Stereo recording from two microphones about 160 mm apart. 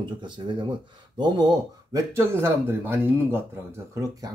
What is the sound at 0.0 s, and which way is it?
Speech, 30° right (ahead or behind).